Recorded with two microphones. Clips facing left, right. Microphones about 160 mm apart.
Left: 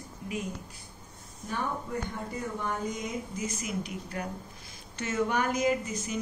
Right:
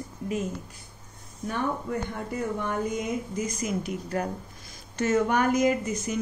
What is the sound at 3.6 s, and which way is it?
Speech, 45° right (ahead or behind).